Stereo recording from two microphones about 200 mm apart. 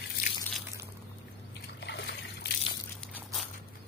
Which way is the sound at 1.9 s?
60° left (ahead or behind).